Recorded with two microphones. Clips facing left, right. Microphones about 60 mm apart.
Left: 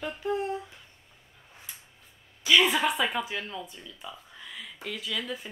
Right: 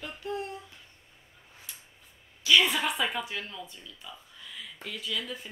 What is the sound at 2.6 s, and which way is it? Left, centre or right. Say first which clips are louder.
Speech: left 3 dB; centre.